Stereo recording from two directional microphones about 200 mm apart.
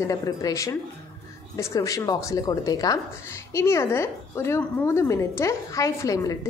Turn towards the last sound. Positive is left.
turn(degrees=15)  # may be behind; listen again after turning